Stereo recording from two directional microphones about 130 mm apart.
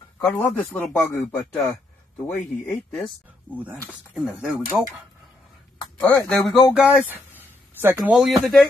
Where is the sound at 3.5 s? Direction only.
10° left (ahead or behind).